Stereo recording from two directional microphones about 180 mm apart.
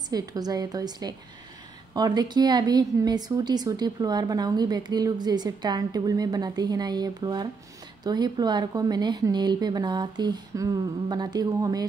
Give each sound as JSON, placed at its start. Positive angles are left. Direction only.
{"t": 0.1, "sound": "a woman's voice", "side_deg": -20}